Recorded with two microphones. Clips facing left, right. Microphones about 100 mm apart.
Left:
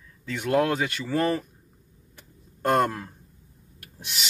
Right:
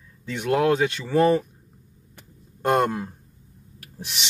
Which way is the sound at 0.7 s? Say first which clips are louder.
Right 6 dB; 15° right (ahead or behind).